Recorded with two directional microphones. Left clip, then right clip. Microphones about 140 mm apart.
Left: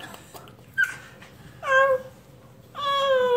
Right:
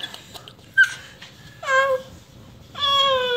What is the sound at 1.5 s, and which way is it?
Babbling, 15° left (ahead or behind).